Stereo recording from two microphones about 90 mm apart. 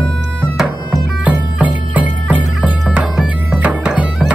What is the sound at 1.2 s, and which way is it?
Music, 15° right (ahead or behind).